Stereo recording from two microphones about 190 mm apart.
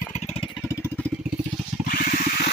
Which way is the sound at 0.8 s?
10° left (ahead or behind).